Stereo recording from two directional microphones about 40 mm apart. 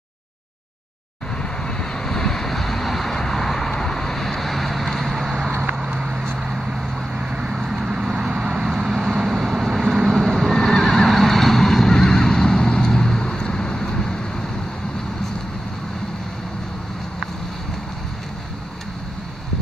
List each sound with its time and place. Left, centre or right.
1.4 s vehicle: left; by 5.5 s centre
5.8 s vehicle: centre
10.1 s neigh: centre